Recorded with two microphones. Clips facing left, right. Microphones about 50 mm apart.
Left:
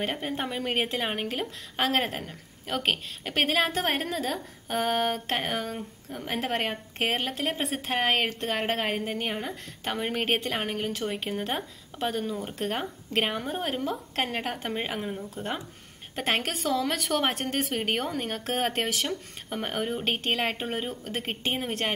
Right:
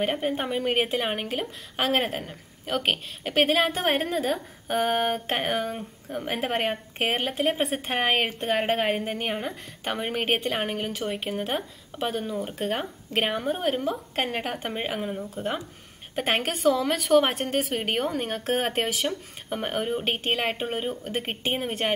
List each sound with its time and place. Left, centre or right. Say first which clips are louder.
0.0 s a woman's voice: right 4 dB; centre